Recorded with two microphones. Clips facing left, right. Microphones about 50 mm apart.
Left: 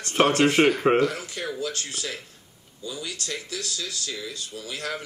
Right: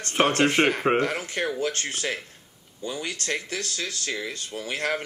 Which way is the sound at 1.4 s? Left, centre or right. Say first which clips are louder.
Right 6 dB; right.